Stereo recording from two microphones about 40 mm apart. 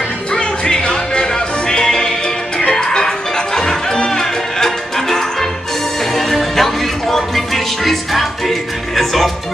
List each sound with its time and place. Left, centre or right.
0.3 s music: left; by 9.3 s centre